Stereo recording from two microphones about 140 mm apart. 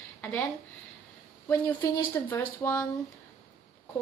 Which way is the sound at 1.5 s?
15° left (ahead or behind).